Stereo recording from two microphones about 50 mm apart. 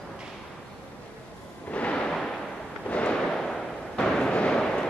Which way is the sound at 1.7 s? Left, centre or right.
Left.